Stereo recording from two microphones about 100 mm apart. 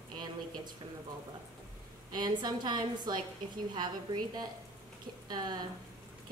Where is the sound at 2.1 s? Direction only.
45° right (ahead or behind).